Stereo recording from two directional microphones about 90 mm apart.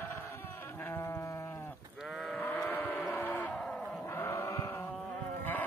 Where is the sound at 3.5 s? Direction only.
5° left (ahead or behind).